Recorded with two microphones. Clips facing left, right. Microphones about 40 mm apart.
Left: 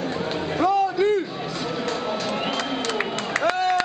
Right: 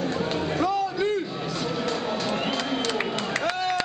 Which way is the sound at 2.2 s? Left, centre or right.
Centre.